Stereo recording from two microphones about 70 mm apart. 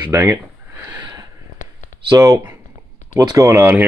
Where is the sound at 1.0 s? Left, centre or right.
Right.